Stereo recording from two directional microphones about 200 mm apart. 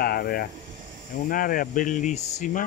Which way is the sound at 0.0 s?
50° left (ahead or behind).